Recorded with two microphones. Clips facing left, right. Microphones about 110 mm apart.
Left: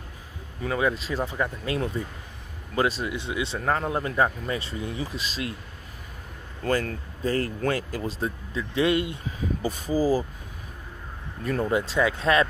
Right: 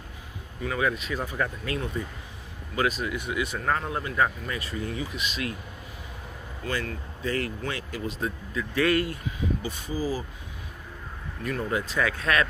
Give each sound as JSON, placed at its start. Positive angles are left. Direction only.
{"t": 0.6, "sound": "speech", "side_deg": 30}
{"t": 6.6, "sound": "speech", "side_deg": 40}
{"t": 9.2, "sound": "speech", "side_deg": 40}
{"t": 11.7, "sound": "speech", "side_deg": 30}